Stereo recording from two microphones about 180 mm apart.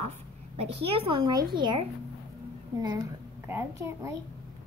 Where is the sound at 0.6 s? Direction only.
30° right (ahead or behind).